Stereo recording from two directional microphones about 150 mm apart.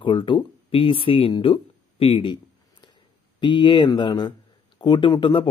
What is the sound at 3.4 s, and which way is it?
Speech, 30° left (ahead or behind).